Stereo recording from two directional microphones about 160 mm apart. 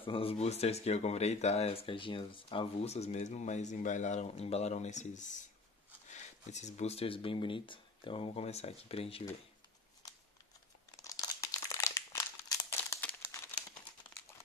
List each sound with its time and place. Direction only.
0.0 s speech: 35° left (ahead or behind)
11.0 s crumpling: 20° left (ahead or behind)